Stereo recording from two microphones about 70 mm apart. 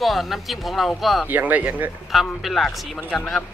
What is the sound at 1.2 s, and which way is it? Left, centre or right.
Speech, right.